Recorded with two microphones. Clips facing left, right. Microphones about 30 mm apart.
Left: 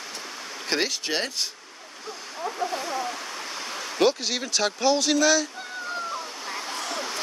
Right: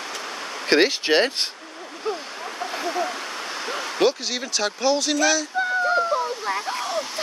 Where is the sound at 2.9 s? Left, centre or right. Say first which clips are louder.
Right 4 dB; right.